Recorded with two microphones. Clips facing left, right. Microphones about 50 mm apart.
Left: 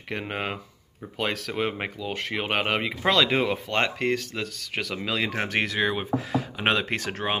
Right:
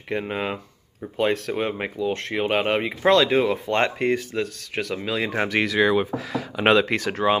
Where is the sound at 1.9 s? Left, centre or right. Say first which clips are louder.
Right 5 dB; left.